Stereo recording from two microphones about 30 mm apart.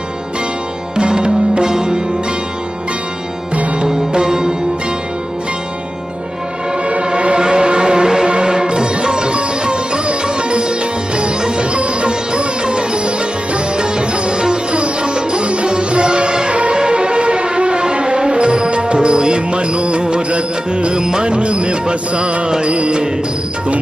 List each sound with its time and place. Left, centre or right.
0.9 s music: right
3.8 s music: right
6.8 s music: right
7.1 s a sound: right
8.3 s music: right
10.2 s sitar: right
15.9 s music: right
20.9 s music: right
21.3 s music: right